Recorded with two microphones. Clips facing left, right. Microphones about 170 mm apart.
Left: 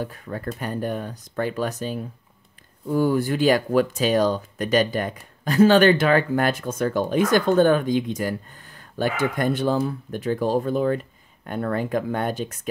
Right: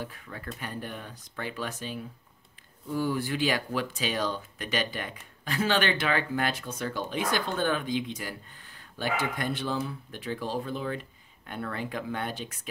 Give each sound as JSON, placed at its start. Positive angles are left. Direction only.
{"t": 0.0, "sound": "speech", "side_deg": 45}